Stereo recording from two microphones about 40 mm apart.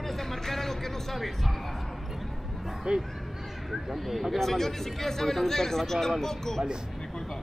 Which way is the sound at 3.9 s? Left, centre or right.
Centre.